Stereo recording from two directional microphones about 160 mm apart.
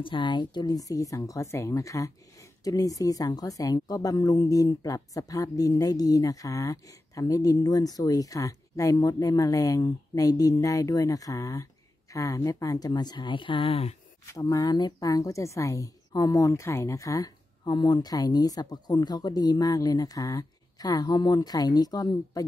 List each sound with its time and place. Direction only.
0.0 s speech: 30° left (ahead or behind)
14.2 s speech: 20° left (ahead or behind)